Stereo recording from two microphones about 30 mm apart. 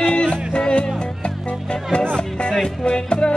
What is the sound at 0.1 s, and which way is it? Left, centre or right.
Music, left.